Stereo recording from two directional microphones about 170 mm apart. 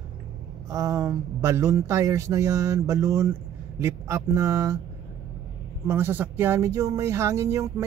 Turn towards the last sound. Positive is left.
turn(degrees=-15)  # may be behind; listen again after turning